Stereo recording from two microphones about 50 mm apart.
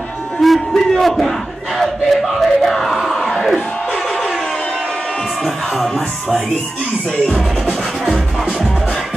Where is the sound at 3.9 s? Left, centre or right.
Centre.